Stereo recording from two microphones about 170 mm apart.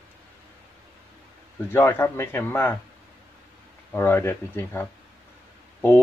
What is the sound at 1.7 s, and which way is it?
Speech, 15° left (ahead or behind).